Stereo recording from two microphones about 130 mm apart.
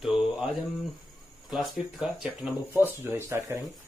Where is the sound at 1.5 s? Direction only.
5° right (ahead or behind).